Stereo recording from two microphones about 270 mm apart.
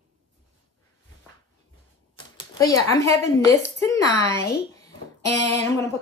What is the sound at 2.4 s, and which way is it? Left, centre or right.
Speech, centre.